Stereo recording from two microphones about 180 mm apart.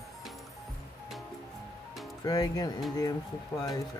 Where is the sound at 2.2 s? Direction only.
20° left (ahead or behind).